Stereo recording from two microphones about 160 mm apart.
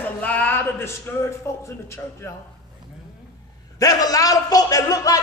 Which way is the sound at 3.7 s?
20° left (ahead or behind).